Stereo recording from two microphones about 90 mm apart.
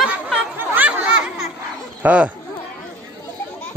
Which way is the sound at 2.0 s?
15° right (ahead or behind).